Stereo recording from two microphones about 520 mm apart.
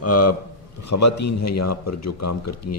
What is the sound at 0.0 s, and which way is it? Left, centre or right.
A man's voice, left.